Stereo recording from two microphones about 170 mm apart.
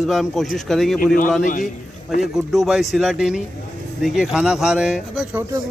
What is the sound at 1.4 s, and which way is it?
Speech, 50° left (ahead or behind).